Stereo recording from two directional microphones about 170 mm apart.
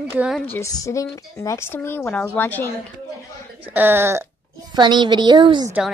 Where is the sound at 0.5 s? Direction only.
20° left (ahead or behind).